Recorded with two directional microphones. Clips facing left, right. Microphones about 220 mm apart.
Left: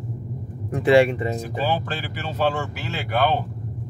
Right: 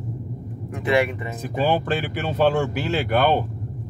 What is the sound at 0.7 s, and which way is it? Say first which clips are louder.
Speech: left 5 dB; 30° left (ahead or behind).